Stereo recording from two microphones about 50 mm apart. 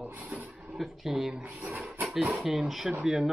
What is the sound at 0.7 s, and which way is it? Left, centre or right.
Speech, centre.